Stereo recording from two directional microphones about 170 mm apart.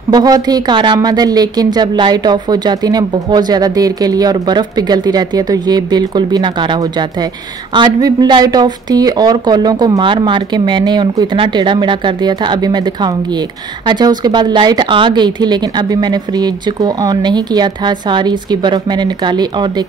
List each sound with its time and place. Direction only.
0.1 s a woman's voice: 25° right (ahead or behind)